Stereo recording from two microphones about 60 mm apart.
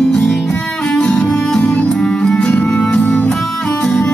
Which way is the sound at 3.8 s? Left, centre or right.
Centre.